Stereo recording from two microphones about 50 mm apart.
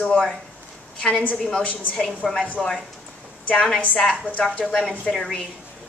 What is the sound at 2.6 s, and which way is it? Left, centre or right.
Speech, centre.